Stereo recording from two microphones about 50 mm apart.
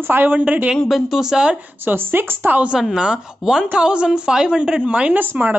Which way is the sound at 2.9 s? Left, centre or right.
Centre.